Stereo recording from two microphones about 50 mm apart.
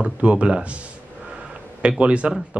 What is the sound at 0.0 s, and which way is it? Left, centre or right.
Speech, right.